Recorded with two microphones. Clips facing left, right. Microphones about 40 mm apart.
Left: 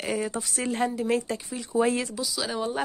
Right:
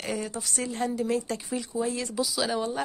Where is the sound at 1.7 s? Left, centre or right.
Left.